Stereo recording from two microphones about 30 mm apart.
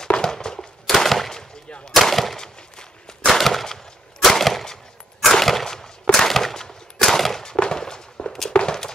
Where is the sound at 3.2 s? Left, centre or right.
Centre.